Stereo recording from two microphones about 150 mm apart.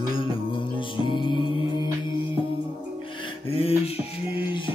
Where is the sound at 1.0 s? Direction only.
35° left (ahead or behind).